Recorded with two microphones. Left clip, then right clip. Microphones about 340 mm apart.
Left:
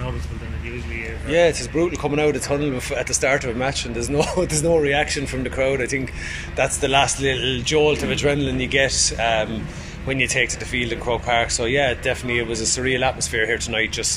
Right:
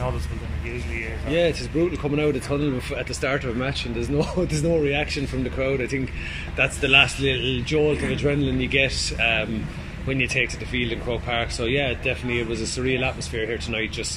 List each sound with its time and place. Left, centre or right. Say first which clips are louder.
1.3 s speech: left 5 dB; left